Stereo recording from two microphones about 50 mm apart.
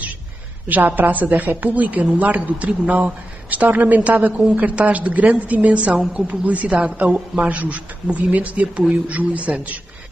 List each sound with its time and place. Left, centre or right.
0.7 s a woman's voice: right